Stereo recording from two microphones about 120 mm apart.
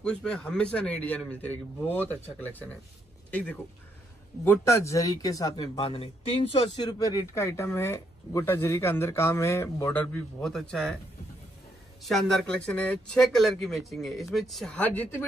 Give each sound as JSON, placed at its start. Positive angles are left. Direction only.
{"t": 0.0, "sound": "a man's voice", "side_deg": 5}
{"t": 4.5, "sound": "speech", "side_deg": 25}
{"t": 5.8, "sound": "speech", "side_deg": 50}
{"t": 6.9, "sound": "speech", "side_deg": 30}
{"t": 10.4, "sound": "speech", "side_deg": 5}
{"t": 12.0, "sound": "a man's voice", "side_deg": 0}